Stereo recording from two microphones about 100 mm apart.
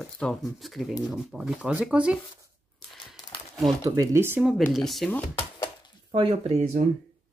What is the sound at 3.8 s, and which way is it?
Speech, 25° right (ahead or behind).